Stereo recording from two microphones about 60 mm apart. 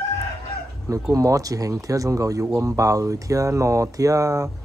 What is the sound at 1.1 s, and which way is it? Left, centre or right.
Speech, right.